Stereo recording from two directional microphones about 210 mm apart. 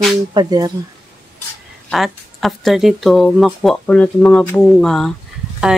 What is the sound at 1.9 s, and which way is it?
Speech, centre (ahead or behind).